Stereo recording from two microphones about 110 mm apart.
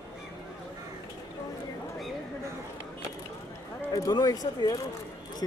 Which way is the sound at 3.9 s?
35° left (ahead or behind).